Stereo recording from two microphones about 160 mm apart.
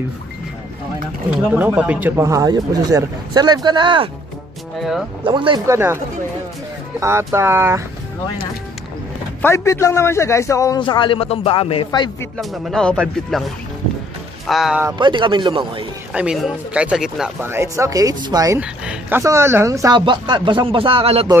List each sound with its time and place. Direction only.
1.4 s speech: 10° right (ahead or behind); by 4.1 s 30° right (ahead or behind)
4.7 s speech: centre (ahead or behind)
5.2 s speech: 30° right (ahead or behind)
5.7 s speech: 15° right (ahead or behind)
7.0 s speech: 15° right (ahead or behind)
9.4 s a man's voice: 15° left (ahead or behind)
12.4 s speech: centre (ahead or behind)
14.5 s speech: centre (ahead or behind)
15.0 s speech: 30° right (ahead or behind)
16.1 s speech: 5° right (ahead or behind)
17.4 s speech: 15° right (ahead or behind)
18.6 s speech: 10° right (ahead or behind); by 21.3 s 35° right (ahead or behind)